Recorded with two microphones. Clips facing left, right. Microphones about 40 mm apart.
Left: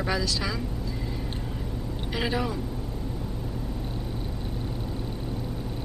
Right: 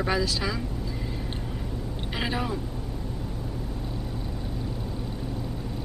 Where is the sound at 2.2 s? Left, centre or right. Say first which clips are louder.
Left 1 dB; centre.